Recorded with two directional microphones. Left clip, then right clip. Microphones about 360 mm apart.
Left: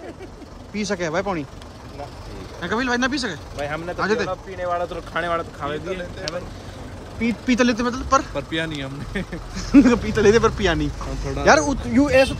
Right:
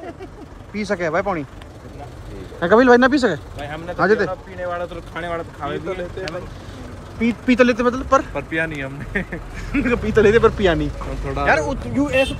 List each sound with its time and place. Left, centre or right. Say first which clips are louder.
0.7 s speech: right 3 dB; centre
2.6 s speech: right 10 dB; centre
3.5 s speech: left 3 dB; left
4.0 s speech: right 6 dB; centre
4.6 s speech: left 3 dB; left
5.6 s speech: right 1 dB; centre
7.2 s speech: right 4 dB; centre